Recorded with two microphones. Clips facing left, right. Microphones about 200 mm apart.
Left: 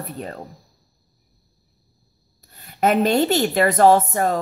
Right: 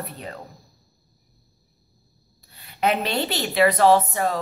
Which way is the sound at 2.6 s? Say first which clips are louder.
Left 5 dB; 45° left (ahead or behind).